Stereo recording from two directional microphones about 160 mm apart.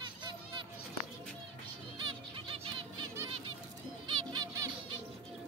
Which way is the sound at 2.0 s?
30° right (ahead or behind).